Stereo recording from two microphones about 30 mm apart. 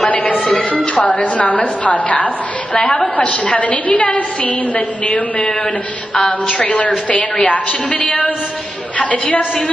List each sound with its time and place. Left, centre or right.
0.0 s a woman's voice: left
6.6 s a woman's voice: left